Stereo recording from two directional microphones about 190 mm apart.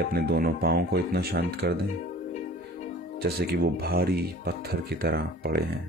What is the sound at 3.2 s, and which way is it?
Speech, 55° right (ahead or behind).